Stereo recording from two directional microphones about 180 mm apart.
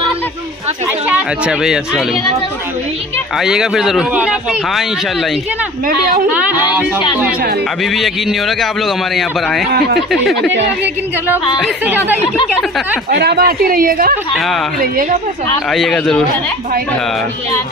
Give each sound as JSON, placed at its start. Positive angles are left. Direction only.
{"t": 1.0, "sound": "speech", "side_deg": -5}
{"t": 3.3, "sound": "speech", "side_deg": -5}
{"t": 7.9, "sound": "speech", "side_deg": 0}
{"t": 9.7, "sound": "a woman's voice", "side_deg": -60}
{"t": 9.9, "sound": "speech", "side_deg": 0}
{"t": 11.6, "sound": "speech", "side_deg": -10}
{"t": 13.1, "sound": "a woman's voice", "side_deg": -65}
{"t": 15.7, "sound": "speech", "side_deg": 0}